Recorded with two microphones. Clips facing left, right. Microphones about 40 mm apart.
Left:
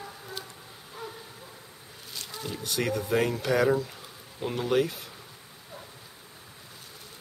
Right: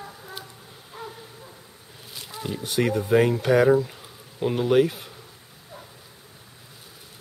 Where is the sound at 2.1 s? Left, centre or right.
Centre.